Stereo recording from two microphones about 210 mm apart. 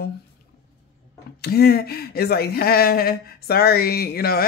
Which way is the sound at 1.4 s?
50° left (ahead or behind).